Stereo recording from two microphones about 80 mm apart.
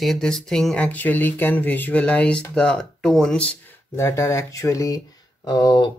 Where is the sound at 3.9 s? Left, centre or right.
Left.